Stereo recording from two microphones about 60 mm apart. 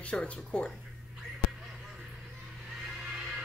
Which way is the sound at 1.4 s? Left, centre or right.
Centre.